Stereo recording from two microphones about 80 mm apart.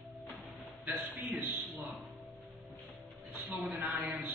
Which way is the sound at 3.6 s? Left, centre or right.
Centre.